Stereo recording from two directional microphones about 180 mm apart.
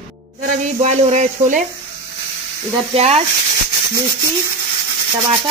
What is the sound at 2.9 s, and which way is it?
Speech, 35° right (ahead or behind).